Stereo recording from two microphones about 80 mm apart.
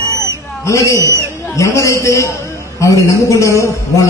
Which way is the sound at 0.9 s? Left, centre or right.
Right.